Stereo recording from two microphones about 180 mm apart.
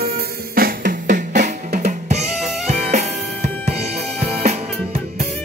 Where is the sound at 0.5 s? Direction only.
50° right (ahead or behind).